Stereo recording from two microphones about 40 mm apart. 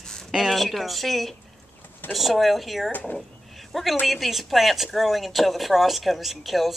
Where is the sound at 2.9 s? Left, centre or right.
Left.